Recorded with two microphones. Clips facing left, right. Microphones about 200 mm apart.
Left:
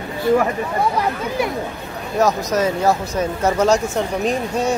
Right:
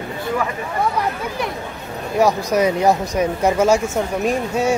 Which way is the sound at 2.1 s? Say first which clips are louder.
Right 1 dB; 10° right (ahead or behind).